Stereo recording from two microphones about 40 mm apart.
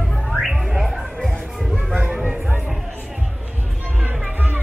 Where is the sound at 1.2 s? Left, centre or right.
Centre.